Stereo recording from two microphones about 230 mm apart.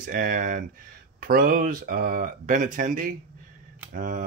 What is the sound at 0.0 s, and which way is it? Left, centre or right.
Speech, right.